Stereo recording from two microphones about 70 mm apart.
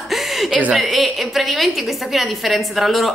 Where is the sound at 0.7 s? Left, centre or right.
Centre.